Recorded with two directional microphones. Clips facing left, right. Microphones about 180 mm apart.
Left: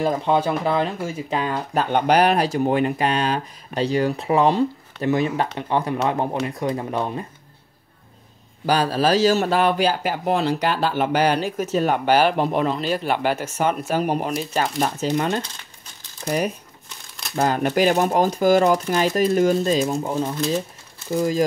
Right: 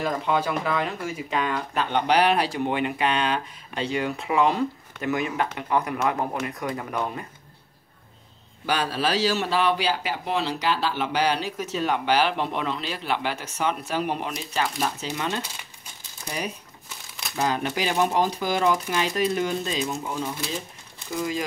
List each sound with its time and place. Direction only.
0.2 s speech: 30° left (ahead or behind)
8.6 s speech: 40° left (ahead or behind)